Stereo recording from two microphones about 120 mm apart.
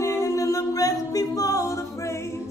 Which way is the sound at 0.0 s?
25° left (ahead or behind).